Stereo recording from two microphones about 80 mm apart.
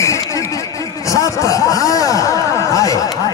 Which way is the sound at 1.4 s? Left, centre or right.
Left.